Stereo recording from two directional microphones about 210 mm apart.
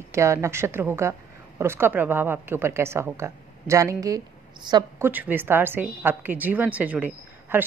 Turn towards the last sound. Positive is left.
turn(degrees=-10)  # may be behind; listen again after turning